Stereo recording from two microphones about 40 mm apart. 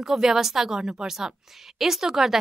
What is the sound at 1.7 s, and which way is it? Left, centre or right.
Speech, centre.